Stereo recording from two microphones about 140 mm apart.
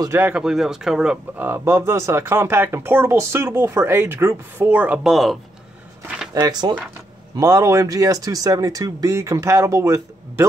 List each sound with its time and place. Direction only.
0.0 s speech: 15° right (ahead or behind); by 5.4 s centre (ahead or behind)
6.4 s speech: 30° right (ahead or behind)